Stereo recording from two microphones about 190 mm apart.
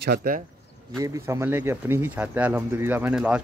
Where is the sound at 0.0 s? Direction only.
50° right (ahead or behind).